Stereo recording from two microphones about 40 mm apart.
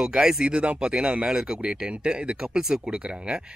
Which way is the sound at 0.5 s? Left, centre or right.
Right.